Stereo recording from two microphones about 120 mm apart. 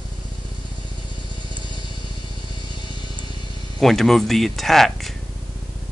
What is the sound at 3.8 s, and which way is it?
Speech, centre (ahead or behind).